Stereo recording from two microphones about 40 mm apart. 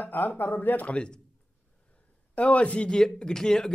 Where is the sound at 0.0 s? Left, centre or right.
Left.